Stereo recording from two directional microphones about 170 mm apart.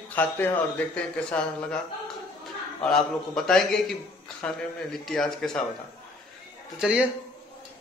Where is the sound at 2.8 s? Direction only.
Centre (ahead or behind).